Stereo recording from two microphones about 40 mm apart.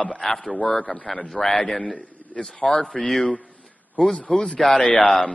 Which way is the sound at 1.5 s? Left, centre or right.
Centre.